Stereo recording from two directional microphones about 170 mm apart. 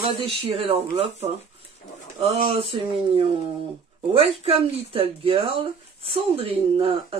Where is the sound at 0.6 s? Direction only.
35° right (ahead or behind).